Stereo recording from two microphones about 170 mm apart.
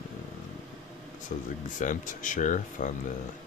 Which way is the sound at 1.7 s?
50° left (ahead or behind).